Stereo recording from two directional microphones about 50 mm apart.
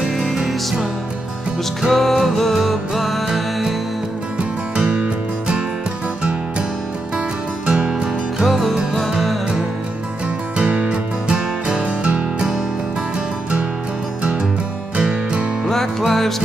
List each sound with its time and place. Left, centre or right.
0.0 s music: centre
1.9 s music: centre
4.4 s music: centre
7.6 s music: right
7.9 s music: centre
10.6 s music: right
15.0 s music: centre
15.6 s music: centre